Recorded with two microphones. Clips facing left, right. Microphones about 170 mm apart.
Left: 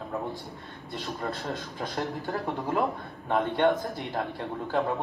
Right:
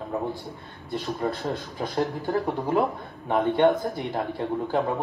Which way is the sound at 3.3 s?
15° right (ahead or behind).